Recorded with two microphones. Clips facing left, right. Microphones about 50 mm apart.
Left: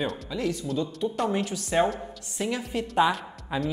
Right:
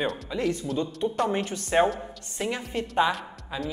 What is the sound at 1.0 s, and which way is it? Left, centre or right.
Speech, centre.